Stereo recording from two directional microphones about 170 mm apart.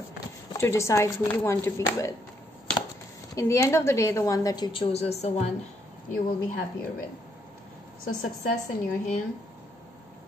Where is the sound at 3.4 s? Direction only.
15° left (ahead or behind); by 5.1 s 35° left (ahead or behind).